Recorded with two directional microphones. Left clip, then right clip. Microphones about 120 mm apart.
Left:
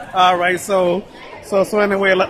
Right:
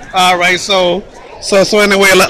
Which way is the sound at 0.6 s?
25° left (ahead or behind).